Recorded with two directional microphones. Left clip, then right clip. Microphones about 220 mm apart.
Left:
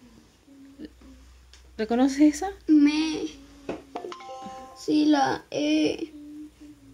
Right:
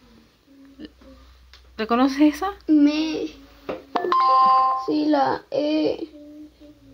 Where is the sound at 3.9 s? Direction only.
35° right (ahead or behind).